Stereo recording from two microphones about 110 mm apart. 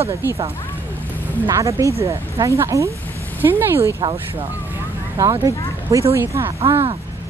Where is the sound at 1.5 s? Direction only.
30° right (ahead or behind).